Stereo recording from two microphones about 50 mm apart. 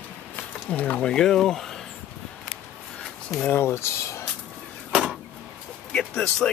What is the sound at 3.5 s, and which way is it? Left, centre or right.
Speech, left.